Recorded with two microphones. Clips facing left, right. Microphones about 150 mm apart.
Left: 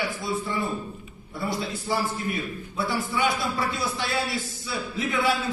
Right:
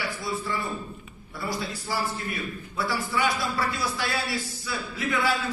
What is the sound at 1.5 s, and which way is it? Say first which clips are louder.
A man's voice: left 3 dB; 25° left (ahead or behind).